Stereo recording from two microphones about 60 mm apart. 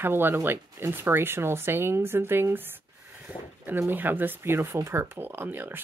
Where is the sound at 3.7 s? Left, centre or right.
Right.